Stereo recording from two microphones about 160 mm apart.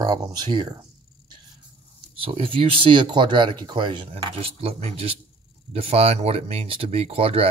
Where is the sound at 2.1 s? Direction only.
35° right (ahead or behind).